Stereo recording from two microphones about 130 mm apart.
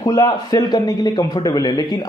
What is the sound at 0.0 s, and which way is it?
A man's voice, 30° left (ahead or behind).